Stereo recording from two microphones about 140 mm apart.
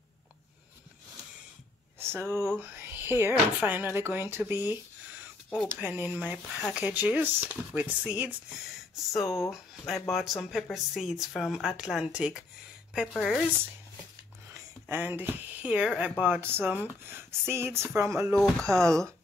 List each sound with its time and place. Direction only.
2.0 s speech: 20° right (ahead or behind); by 13.4 s centre (ahead or behind)
14.5 s speech: 15° right (ahead or behind)
18.3 s speech: 5° left (ahead or behind)